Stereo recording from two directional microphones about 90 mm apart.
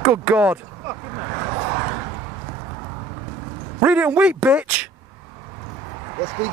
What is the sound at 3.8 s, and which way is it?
A man's voice, 20° right (ahead or behind).